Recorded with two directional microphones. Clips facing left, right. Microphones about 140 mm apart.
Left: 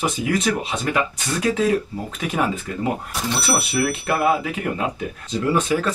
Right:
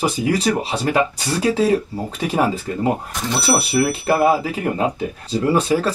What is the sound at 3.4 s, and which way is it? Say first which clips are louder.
Speech: right 5 dB; 30° right (ahead or behind).